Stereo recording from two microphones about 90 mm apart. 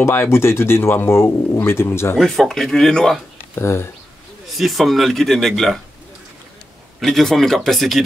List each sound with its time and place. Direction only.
0.0 s speech: 30° left (ahead or behind)
2.1 s speech: centre (ahead or behind)
3.5 s speech: 30° left (ahead or behind)
4.6 s speech: centre (ahead or behind)
7.0 s speech: 5° left (ahead or behind)